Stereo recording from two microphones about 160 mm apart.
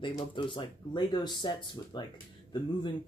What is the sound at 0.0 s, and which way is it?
Speech, 30° left (ahead or behind).